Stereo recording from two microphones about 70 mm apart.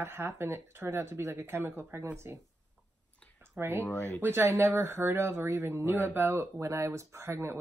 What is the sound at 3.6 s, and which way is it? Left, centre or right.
Speech, right.